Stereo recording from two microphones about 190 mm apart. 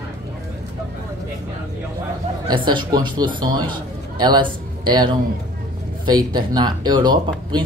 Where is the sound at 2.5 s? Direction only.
20° right (ahead or behind).